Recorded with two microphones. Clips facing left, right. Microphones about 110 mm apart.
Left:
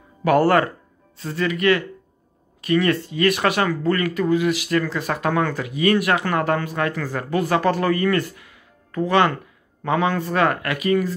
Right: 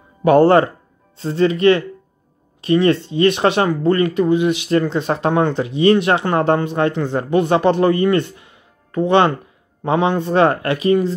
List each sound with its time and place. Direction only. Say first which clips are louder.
0.2 s speech: right 5 dB; 25° right (ahead or behind)